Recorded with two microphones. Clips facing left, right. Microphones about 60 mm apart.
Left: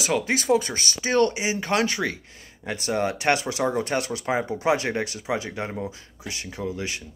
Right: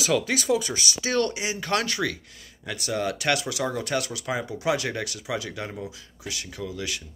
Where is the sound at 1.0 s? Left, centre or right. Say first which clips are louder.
Left 5 dB; left.